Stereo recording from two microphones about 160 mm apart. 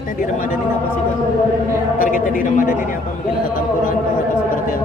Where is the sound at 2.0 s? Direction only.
60° left (ahead or behind).